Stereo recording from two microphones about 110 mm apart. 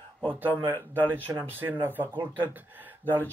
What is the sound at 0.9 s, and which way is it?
Speech, 20° right (ahead or behind).